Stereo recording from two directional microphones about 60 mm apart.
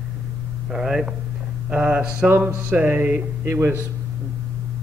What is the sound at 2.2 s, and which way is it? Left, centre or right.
Speech, right.